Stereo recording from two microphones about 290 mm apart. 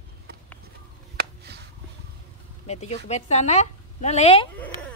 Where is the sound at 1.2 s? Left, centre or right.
Right.